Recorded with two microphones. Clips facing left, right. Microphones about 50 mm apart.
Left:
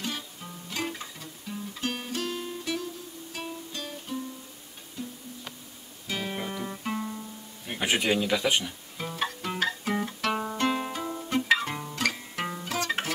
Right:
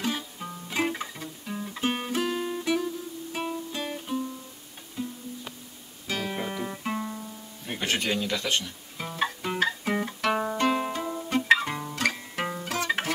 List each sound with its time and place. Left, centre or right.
0.0 s music: centre
6.0 s guitar: centre
7.8 s speech: centre
8.9 s music: centre